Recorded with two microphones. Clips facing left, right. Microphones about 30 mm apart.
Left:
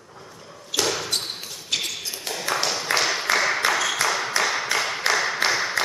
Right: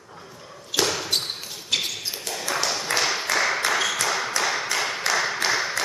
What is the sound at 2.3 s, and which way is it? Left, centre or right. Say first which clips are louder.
Tap: left 2 dB; centre.